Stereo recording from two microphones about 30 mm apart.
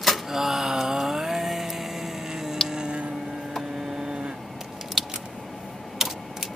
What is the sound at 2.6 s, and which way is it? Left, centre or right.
Tick-tock, right.